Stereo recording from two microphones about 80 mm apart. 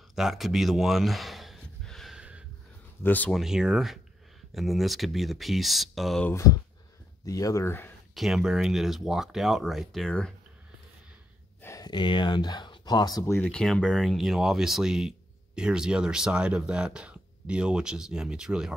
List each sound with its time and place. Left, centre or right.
0.1 s a sound: centre
2.1 s snort: centre
3.0 s speech: left
3.3 s speech: centre
6.3 s speech: left
7.6 s speech: left
8.1 s speech: centre
11.8 s speech: left
13.4 s speech: centre